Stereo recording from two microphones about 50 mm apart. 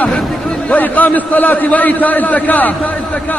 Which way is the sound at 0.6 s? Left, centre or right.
Left.